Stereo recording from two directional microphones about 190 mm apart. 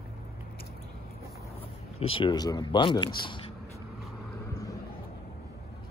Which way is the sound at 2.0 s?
25° left (ahead or behind).